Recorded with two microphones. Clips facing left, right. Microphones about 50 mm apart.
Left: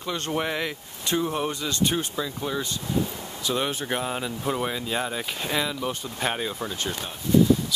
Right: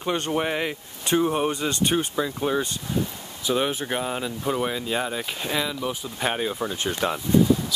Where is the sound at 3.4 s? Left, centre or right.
Centre.